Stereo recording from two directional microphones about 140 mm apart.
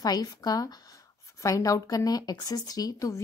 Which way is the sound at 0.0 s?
30° left (ahead or behind).